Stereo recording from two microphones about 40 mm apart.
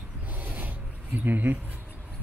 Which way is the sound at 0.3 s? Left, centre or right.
Right.